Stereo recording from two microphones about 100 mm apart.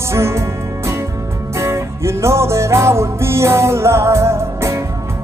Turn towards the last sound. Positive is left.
turn(degrees=-25)  # may be behind; listen again after turning